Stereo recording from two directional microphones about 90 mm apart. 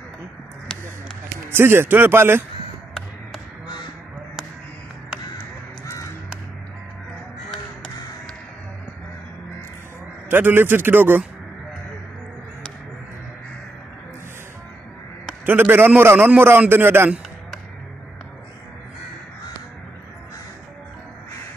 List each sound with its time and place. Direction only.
1.5 s a man's voice: 25° right (ahead or behind)
10.3 s a man's voice: 25° right (ahead or behind)
15.4 s a man's voice: 20° right (ahead or behind)